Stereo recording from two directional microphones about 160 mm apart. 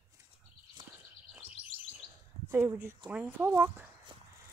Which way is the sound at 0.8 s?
25° right (ahead or behind).